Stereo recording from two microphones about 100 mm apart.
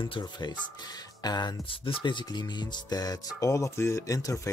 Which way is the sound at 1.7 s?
65° left (ahead or behind).